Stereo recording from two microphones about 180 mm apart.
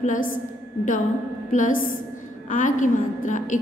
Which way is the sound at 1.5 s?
45° left (ahead or behind).